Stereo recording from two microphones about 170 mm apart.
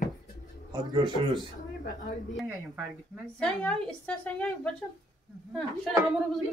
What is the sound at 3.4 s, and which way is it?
A woman's voice, 5° left (ahead or behind).